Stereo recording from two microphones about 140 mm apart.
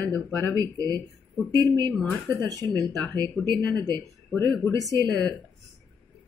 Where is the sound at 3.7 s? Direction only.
30° right (ahead or behind).